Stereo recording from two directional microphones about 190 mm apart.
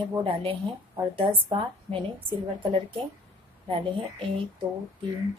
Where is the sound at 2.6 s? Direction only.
25° right (ahead or behind).